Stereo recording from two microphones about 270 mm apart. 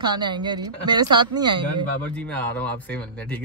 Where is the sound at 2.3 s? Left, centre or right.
Centre.